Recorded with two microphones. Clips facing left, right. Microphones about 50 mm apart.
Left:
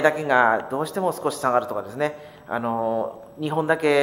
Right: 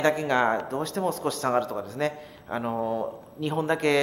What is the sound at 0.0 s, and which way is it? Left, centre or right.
Speech, centre.